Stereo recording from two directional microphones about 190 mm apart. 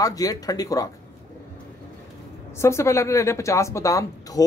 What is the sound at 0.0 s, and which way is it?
Speech, 20° left (ahead or behind).